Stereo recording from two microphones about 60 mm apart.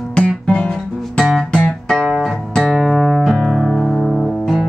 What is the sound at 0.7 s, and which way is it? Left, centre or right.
Music, centre.